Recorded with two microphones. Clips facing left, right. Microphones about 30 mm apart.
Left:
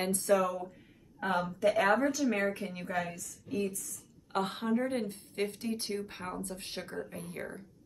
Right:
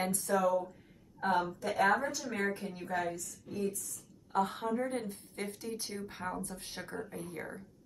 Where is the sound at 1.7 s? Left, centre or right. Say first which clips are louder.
Left 3 dB; left.